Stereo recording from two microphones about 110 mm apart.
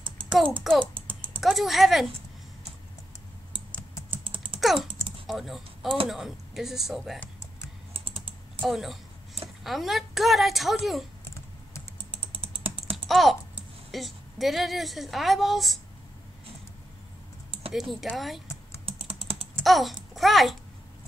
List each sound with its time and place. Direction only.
0.2 s a child's voice: 10° left (ahead or behind)
1.4 s a woman's voice: centre (ahead or behind)
4.1 s typing: 55° right (ahead or behind)
5.2 s a woman's voice: centre (ahead or behind)
7.9 s typing: 60° right (ahead or behind)
8.5 s a sound: centre (ahead or behind)
9.6 s a woman's voice: centre (ahead or behind)
12.4 s typing: 60° right (ahead or behind)
12.9 s typing: centre (ahead or behind)
13.9 s a woman's voice: centre (ahead or behind)
18.1 s a woman's voice: centre (ahead or behind)
18.9 s typing: 60° right (ahead or behind)
19.6 s a child's voice: centre (ahead or behind)